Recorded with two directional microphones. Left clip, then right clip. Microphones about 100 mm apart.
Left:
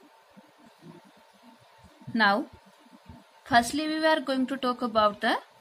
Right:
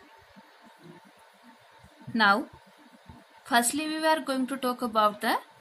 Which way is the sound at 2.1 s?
Centre (ahead or behind).